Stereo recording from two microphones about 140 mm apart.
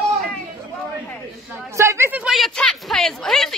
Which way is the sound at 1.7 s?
20° right (ahead or behind).